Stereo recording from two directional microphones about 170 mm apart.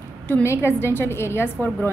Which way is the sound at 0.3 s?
15° left (ahead or behind).